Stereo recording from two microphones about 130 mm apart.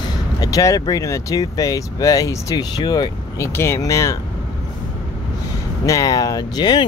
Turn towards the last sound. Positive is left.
turn(degrees=30)  # may be behind; listen again after turning